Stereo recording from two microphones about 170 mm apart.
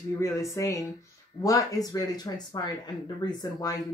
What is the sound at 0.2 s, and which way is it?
Speech, 20° left (ahead or behind).